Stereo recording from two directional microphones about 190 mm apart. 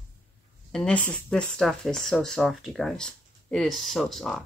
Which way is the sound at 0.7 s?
5° left (ahead or behind).